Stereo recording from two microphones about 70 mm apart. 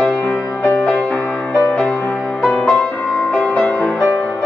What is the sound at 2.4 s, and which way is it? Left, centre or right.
Music, centre.